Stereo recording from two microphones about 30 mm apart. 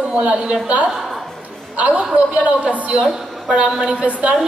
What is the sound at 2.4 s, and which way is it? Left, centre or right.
A woman's voice, right.